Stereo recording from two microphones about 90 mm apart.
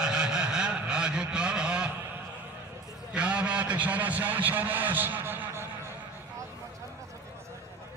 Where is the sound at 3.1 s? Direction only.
10° right (ahead or behind).